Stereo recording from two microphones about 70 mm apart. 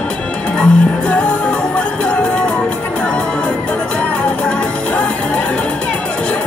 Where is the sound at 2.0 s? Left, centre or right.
Centre.